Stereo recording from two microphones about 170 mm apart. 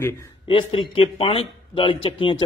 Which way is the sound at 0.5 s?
30° left (ahead or behind).